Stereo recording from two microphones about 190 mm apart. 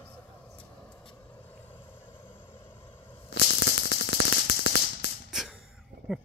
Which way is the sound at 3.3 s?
60° left (ahead or behind).